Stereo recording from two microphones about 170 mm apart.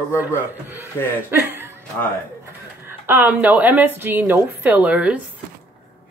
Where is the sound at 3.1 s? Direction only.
10° right (ahead or behind).